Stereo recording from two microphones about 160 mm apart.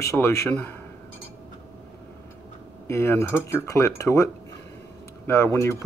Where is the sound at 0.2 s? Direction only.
15° left (ahead or behind).